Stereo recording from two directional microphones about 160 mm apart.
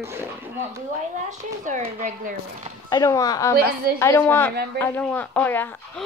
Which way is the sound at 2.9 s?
20° left (ahead or behind).